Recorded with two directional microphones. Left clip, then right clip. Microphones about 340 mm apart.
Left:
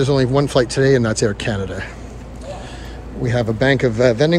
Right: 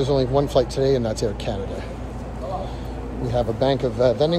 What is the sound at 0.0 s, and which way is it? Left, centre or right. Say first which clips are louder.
A man's voice: left 3 dB; left.